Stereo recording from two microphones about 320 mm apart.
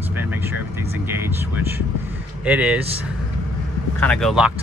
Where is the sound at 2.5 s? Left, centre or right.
Centre.